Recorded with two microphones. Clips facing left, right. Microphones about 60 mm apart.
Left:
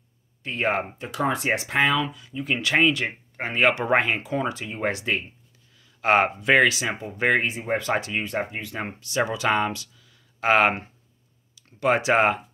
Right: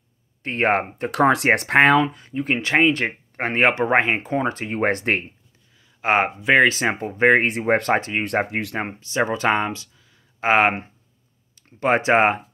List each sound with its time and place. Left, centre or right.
0.4 s speech: right
2.9 s speech: right
3.6 s speech: right
5.9 s speech: right
6.7 s speech: right
7.1 s speech: right
7.4 s speech: right
7.9 s speech: right
8.2 s speech: right
8.5 s speech: right
8.7 s speech: right